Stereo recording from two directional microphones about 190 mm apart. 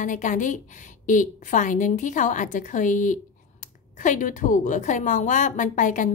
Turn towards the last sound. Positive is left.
turn(degrees=40)  # may be behind; listen again after turning